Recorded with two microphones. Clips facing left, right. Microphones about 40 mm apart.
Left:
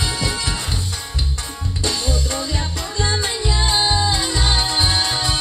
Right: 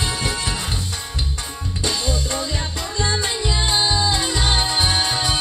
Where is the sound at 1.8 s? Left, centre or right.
Centre.